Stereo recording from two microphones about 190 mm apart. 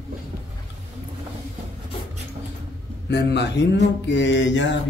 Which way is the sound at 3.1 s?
60° left (ahead or behind).